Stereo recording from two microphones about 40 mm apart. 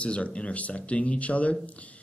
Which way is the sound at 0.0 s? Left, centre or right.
Left.